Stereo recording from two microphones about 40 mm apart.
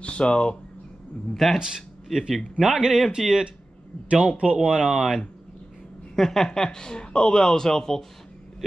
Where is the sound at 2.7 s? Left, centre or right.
Centre.